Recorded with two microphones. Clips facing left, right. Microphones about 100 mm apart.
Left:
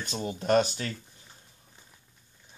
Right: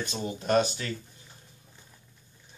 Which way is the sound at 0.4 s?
35° left (ahead or behind).